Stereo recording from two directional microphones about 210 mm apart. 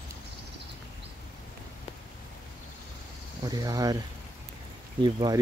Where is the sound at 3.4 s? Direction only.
15° right (ahead or behind).